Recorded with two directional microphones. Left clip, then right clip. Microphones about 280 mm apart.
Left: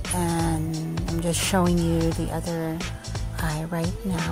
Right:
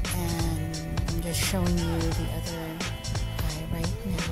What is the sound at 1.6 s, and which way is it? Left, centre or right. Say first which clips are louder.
Speech: left 6 dB; centre.